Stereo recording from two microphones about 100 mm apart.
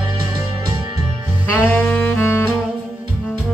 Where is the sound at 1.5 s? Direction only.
15° left (ahead or behind).